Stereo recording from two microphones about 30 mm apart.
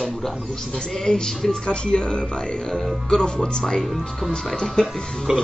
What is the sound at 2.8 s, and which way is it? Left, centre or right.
Speech, centre.